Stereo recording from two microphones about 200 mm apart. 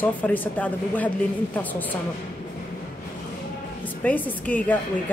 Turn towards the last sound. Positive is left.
turn(degrees=10)  # may be behind; listen again after turning